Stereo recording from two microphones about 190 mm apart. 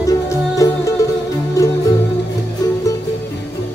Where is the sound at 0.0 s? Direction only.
15° left (ahead or behind).